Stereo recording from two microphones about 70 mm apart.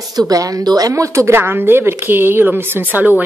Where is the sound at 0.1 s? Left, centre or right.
Right.